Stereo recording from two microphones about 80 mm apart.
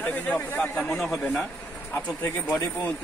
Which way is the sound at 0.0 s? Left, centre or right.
Centre.